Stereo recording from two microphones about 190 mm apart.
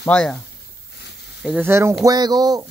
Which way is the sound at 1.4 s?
10° right (ahead or behind).